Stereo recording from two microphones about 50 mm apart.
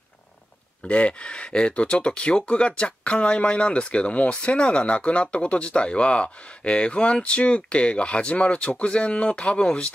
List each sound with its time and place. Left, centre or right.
0.8 s speech: left